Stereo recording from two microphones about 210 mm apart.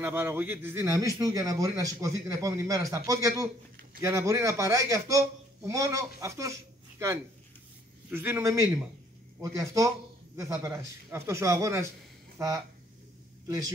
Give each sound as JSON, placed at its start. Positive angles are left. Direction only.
{"t": 0.0, "sound": "a man's voice", "side_deg": -10}
{"t": 8.1, "sound": "a man's voice", "side_deg": -10}